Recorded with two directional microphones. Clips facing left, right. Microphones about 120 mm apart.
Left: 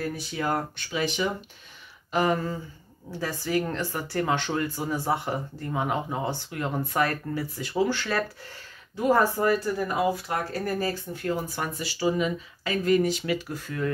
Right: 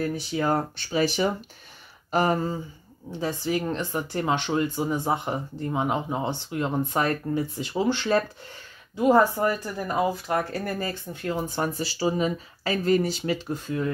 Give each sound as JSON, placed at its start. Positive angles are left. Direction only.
{"t": 0.1, "sound": "speech", "side_deg": -30}
{"t": 2.0, "sound": "a sound", "side_deg": -40}
{"t": 3.2, "sound": "speech", "side_deg": -20}
{"t": 10.5, "sound": "speech", "side_deg": 30}
{"t": 10.9, "sound": "speech", "side_deg": -25}